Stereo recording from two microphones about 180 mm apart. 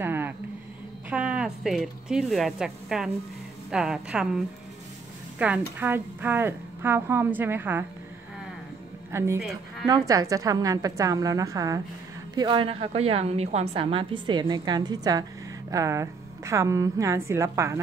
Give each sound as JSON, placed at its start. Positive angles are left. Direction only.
{"t": 0.0, "sound": "a sound", "side_deg": -10}
{"t": 1.1, "sound": "a woman's voice", "side_deg": -5}
{"t": 5.4, "sound": "a woman's voice", "side_deg": -10}
{"t": 9.1, "sound": "a woman's voice", "side_deg": -15}
{"t": 9.4, "sound": "a woman's voice", "side_deg": 0}
{"t": 9.8, "sound": "a woman's voice", "side_deg": -20}